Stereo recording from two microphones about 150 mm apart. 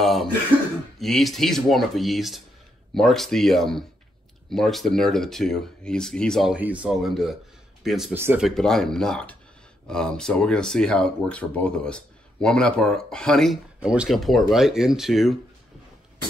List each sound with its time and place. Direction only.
0.0 s speech: centre (ahead or behind)
8.1 s speech: 15° right (ahead or behind)
8.5 s speech: 5° left (ahead or behind)